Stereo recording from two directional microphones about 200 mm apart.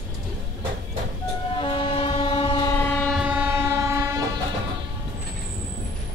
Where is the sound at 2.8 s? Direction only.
5° left (ahead or behind).